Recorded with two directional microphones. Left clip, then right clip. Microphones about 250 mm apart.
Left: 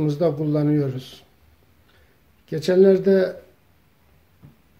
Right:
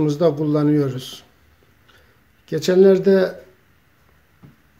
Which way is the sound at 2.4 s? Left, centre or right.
Centre.